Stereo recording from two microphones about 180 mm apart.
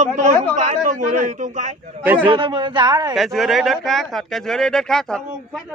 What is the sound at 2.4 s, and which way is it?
Speech, 25° right (ahead or behind).